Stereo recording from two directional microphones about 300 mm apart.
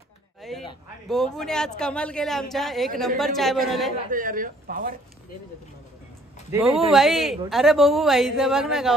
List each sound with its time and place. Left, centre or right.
0.4 s a sound: centre
1.0 s a woman's voice: centre
4.1 s speech: right
6.5 s a woman's voice: centre